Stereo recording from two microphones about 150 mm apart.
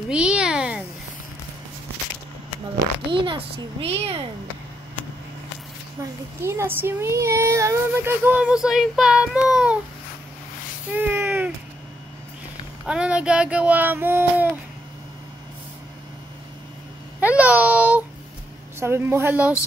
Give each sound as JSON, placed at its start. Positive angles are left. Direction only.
{"t": 0.1, "sound": "a sound", "side_deg": -5}
{"t": 2.8, "sound": "a child's voice", "side_deg": -35}
{"t": 6.4, "sound": "speech", "side_deg": -15}
{"t": 10.9, "sound": "a sound", "side_deg": -10}
{"t": 12.8, "sound": "speech", "side_deg": -5}
{"t": 17.2, "sound": "a child's voice", "side_deg": -10}